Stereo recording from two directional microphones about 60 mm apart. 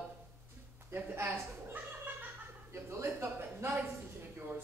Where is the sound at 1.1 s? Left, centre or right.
Right.